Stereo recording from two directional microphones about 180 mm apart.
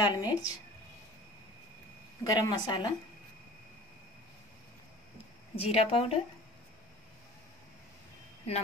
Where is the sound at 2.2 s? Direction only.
20° left (ahead or behind).